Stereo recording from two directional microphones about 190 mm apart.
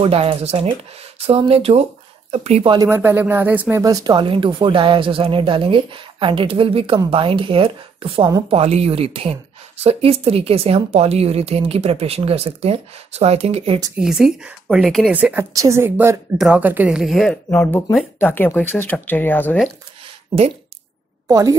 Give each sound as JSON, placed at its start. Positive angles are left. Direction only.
{"t": 0.0, "sound": "speech", "side_deg": -30}
{"t": 2.7, "sound": "speech", "side_deg": -15}
{"t": 13.9, "sound": "a woman's voice", "side_deg": -5}
{"t": 21.3, "sound": "a woman's voice", "side_deg": -20}